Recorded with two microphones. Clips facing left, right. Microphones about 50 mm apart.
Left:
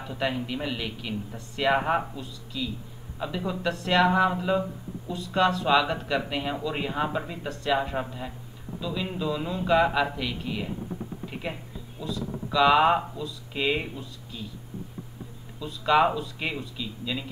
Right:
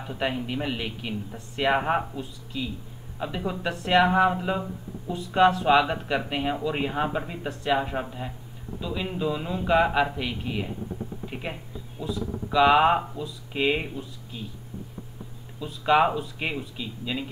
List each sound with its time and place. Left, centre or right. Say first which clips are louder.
0.0 s speech: even; centre
2.1 s a man's voice: right 1 dB; right
11.2 s a sound: left 1 dB; centre
12.1 s speech: right 1 dB; centre
15.6 s speech: right 1 dB; centre